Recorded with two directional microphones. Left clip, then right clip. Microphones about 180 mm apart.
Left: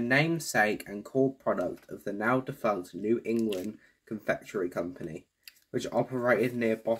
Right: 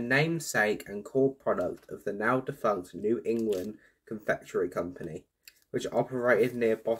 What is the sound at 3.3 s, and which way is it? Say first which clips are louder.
Speech: right 1 dB; 20° left (ahead or behind).